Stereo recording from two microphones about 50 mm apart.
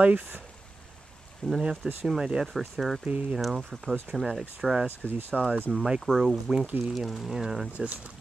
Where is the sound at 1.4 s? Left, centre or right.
Centre.